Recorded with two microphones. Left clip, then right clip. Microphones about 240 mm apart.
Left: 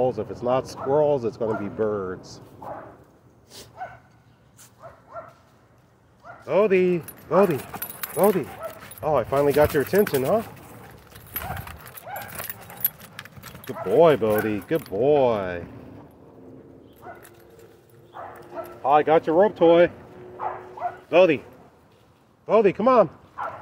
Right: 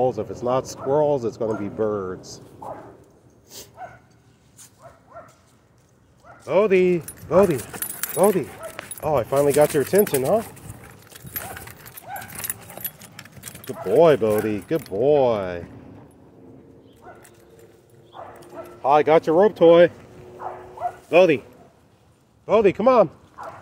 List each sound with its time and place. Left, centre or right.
0.0 s speech: centre
5.1 s bow-wow: left
6.4 s speech: right
12.2 s keys jangling: centre
13.8 s speech: centre
18.8 s speech: right
21.1 s speech: right
22.5 s speech: right